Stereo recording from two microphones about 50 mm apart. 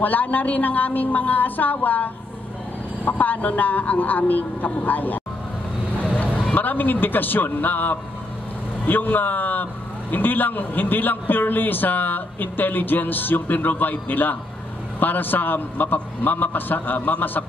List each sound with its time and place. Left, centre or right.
0.0 s a man's voice: left
3.1 s a man's voice: left
5.9 s vehicle: left
6.5 s a man's voice: left